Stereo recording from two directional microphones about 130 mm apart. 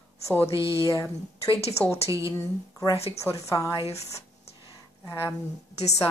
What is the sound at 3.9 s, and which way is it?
Speech, 55° left (ahead or behind).